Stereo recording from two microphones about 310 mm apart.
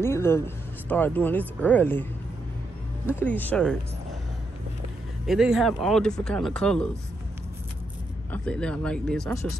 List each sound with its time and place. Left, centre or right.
0.0 s speech: centre
3.2 s speech: centre
5.2 s speech: centre
8.3 s speech: centre